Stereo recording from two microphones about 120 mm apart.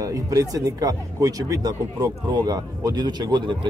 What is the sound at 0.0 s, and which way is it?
Speech, 25° right (ahead or behind).